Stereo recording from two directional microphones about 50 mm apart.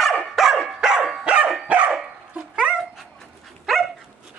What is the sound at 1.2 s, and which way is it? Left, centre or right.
Dog, right.